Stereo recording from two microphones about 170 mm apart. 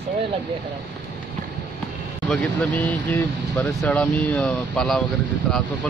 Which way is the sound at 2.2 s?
5° left (ahead or behind).